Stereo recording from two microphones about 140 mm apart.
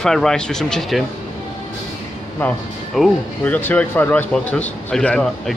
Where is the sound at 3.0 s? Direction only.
Centre (ahead or behind).